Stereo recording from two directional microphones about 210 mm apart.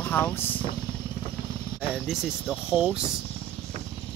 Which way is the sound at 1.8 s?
Centre (ahead or behind).